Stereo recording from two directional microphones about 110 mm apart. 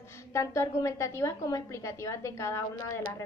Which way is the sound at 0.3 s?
25° left (ahead or behind).